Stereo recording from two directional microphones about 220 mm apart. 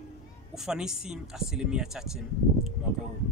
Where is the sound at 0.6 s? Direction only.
5° right (ahead or behind).